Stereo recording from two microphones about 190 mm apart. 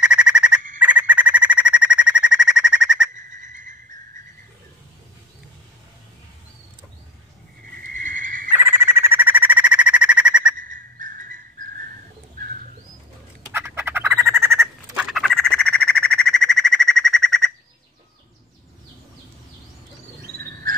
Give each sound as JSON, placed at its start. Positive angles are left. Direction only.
{"t": 0.0, "sound": "fowl", "side_deg": -5}
{"t": 0.7, "sound": "bird", "side_deg": -5}
{"t": 3.2, "sound": "whistle", "side_deg": -40}
{"t": 7.8, "sound": "horse", "side_deg": -45}
{"t": 8.5, "sound": "a sound", "side_deg": -10}
{"t": 10.5, "sound": "a sound", "side_deg": -45}
{"t": 13.5, "sound": "bird", "side_deg": -10}
{"t": 15.0, "sound": "a sound", "side_deg": 0}
{"t": 20.7, "sound": "frog", "side_deg": -50}